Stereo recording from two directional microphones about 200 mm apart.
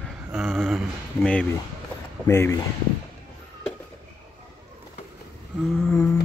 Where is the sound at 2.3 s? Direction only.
15° left (ahead or behind).